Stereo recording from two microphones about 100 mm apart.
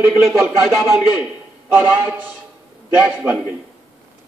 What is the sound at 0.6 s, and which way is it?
Speech, 5° right (ahead or behind).